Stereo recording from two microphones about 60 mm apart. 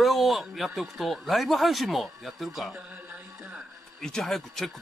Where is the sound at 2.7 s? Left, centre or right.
Right.